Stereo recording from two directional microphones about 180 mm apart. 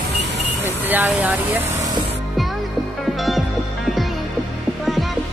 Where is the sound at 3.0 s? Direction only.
Centre (ahead or behind).